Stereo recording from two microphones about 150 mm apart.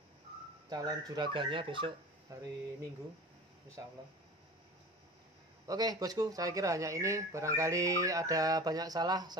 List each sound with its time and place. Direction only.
0.7 s speech: 25° right (ahead or behind)
2.3 s speech: 25° right (ahead or behind)
3.8 s speech: 15° right (ahead or behind)
5.7 s speech: 25° right (ahead or behind)